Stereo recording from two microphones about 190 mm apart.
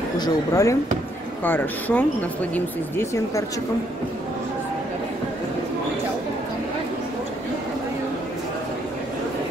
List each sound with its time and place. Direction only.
0.2 s speech: 15° left (ahead or behind)